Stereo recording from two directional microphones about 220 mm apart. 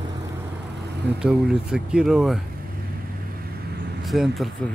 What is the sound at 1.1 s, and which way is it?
Speech, 5° right (ahead or behind).